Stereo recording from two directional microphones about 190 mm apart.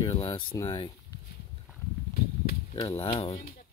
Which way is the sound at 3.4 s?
50° left (ahead or behind).